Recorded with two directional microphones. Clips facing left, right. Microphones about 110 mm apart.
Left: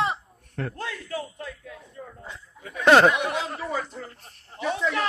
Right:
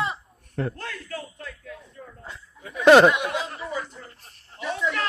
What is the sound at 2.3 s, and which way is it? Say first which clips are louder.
Speech: right 1 dB; 5° right (ahead or behind).